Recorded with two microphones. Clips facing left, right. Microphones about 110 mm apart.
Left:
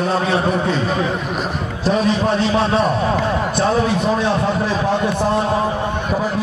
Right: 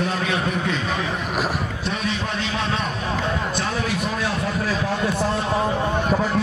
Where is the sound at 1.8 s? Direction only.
35° left (ahead or behind).